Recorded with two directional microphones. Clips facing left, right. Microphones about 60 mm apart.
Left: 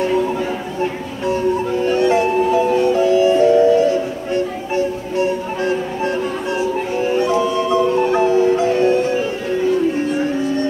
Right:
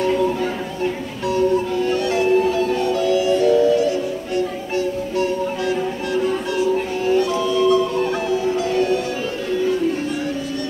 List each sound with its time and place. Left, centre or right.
1.2 s music: left
7.0 s music: left